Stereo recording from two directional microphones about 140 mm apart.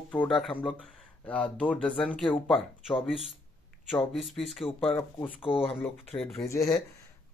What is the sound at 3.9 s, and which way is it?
Speech, 40° left (ahead or behind).